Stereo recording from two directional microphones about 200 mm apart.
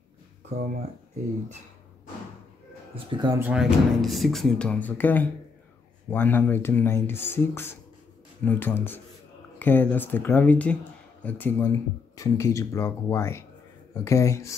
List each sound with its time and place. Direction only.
2.9 s speech: 25° right (ahead or behind)
3.3 s speech: 5° right (ahead or behind); by 14.5 s 15° left (ahead or behind)